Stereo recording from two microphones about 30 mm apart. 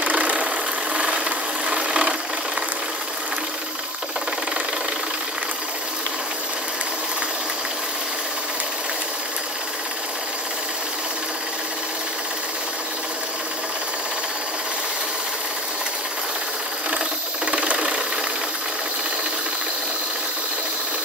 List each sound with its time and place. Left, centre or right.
0.0 s engine: right
1.7 s engine: right
17.5 s engine: right